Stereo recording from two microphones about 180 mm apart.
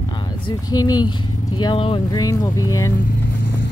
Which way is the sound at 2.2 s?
20° left (ahead or behind).